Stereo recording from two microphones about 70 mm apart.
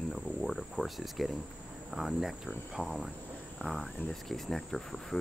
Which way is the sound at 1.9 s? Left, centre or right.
Centre.